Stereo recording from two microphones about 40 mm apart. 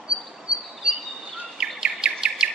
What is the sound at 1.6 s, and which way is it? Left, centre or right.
Bird vocalization, right.